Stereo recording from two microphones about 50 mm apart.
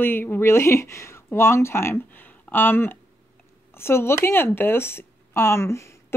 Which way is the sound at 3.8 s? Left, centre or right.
Left.